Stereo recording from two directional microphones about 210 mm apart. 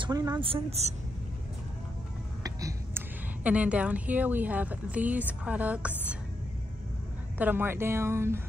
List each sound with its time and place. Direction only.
0.0 s a woman's voice: 20° right (ahead or behind)
2.4 s a sound: 15° right (ahead or behind)
3.4 s speech: 5° right (ahead or behind)
7.3 s speech: 10° right (ahead or behind)